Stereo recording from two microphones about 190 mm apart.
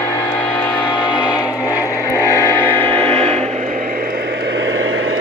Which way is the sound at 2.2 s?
15° left (ahead or behind).